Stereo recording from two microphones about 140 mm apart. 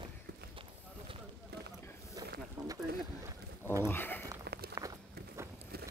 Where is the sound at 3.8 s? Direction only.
15° left (ahead or behind).